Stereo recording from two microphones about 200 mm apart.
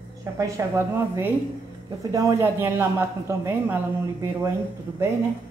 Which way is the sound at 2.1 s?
15° right (ahead or behind).